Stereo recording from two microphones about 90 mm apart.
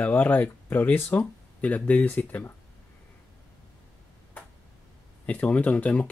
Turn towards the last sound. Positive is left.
turn(degrees=15)  # may be behind; listen again after turning